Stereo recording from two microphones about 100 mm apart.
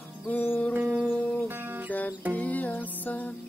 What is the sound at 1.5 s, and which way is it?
Music, 20° right (ahead or behind).